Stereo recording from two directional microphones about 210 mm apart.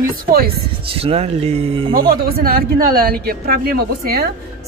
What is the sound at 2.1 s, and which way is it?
Speech, 45° right (ahead or behind).